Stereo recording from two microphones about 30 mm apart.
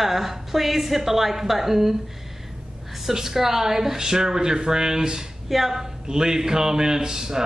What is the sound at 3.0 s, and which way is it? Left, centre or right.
Speech, centre.